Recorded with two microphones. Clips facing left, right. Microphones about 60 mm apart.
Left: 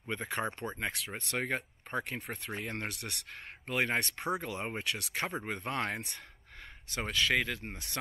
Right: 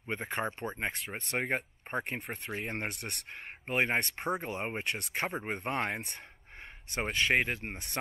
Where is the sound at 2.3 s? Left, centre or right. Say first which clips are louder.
Right 1 dB; centre.